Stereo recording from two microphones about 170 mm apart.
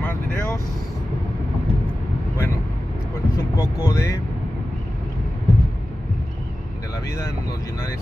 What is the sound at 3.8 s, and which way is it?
Speech, 20° left (ahead or behind).